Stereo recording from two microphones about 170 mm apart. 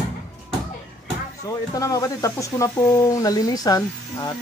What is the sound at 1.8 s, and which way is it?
Speech, 20° left (ahead or behind).